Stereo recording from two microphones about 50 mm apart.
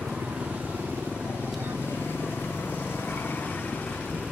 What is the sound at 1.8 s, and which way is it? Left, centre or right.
Vehicle, left.